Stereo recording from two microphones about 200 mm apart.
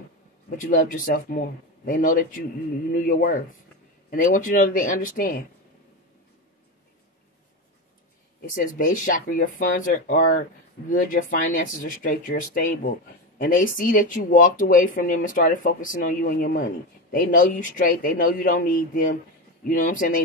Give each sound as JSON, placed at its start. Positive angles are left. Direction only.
{"t": 0.6, "sound": "speech", "side_deg": 40}
{"t": 8.4, "sound": "speech", "side_deg": 45}